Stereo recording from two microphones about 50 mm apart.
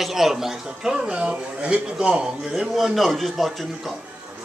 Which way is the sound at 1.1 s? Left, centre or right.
Right.